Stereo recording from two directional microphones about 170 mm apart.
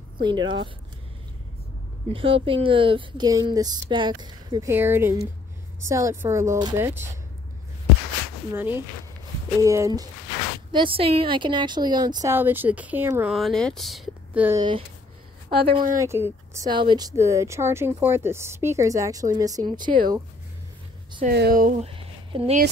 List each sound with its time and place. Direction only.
0.2 s speech: 25° right (ahead or behind)
2.1 s speech: 30° right (ahead or behind)
4.6 s speech: 15° right (ahead or behind)
8.5 s speech: 10° right (ahead or behind)
10.7 s speech: 30° right (ahead or behind); by 13.3 s 10° right (ahead or behind)
13.3 s speech: centre (ahead or behind)
15.5 s speech: 30° right (ahead or behind)
16.7 s speech: 25° right (ahead or behind)
21.2 s speech: 65° right (ahead or behind)
21.8 s a sound: 30° right (ahead or behind)